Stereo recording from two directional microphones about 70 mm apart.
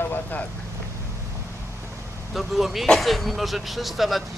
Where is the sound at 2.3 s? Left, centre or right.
Centre.